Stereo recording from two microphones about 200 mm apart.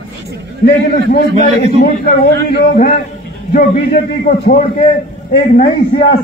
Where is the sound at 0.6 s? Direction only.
50° left (ahead or behind); by 4.9 s 30° left (ahead or behind).